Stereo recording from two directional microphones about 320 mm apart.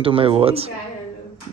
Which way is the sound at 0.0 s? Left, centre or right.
Centre.